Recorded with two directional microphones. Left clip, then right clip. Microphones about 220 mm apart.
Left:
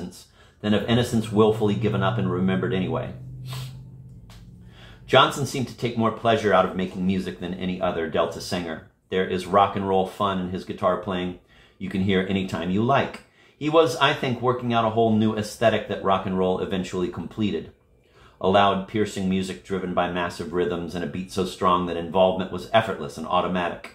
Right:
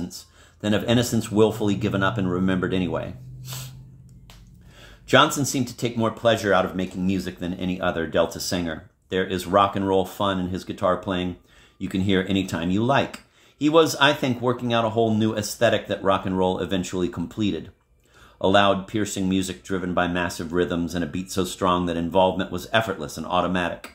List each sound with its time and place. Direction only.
0.7 s speech: 50° right (ahead or behind)
5.0 s speech: 50° right (ahead or behind)